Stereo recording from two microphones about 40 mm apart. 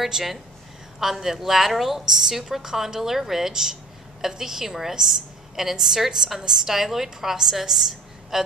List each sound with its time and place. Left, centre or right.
0.0 s a woman's voice: centre